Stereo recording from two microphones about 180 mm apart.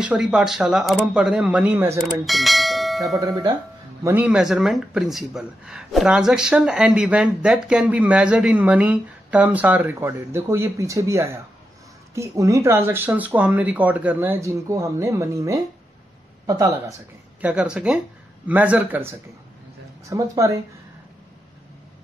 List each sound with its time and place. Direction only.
0.0 s speech: 5° right (ahead or behind)
2.2 s bell: centre (ahead or behind)
3.2 s speech: 20° right (ahead or behind)
4.0 s speech: 10° right (ahead or behind)
17.4 s speech: 5° right (ahead or behind)